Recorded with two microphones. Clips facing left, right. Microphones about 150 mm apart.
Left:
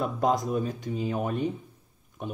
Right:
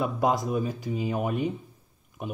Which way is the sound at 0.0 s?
5° right (ahead or behind).